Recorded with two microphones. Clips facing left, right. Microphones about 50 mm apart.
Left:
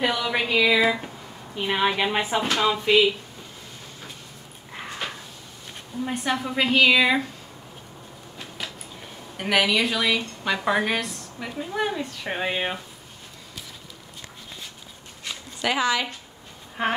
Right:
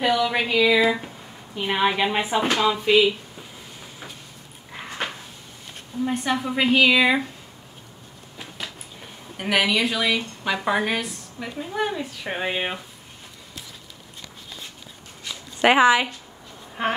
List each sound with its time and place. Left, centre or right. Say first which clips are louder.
0.0 s a woman's voice: right 3 dB; centre
6.0 s a woman's voice: right 2 dB; centre
9.4 s a woman's voice: even; centre
15.6 s speech: right 8 dB; right
16.8 s a woman's voice: even; centre